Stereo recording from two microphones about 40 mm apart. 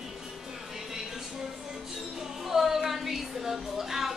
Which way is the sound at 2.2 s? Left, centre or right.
Centre.